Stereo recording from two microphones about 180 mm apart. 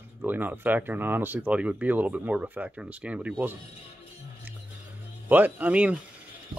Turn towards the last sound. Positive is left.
turn(degrees=-5)  # may be behind; listen again after turning